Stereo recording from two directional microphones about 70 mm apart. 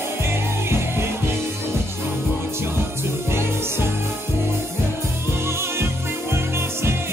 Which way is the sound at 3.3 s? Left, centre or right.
Right.